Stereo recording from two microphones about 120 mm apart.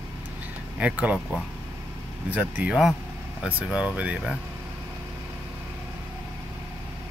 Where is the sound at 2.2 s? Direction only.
15° right (ahead or behind).